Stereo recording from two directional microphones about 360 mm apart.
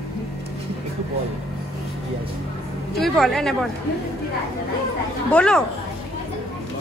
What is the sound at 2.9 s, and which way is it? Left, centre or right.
Speech, centre.